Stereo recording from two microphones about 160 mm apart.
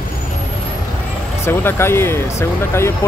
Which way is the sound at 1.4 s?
15° left (ahead or behind).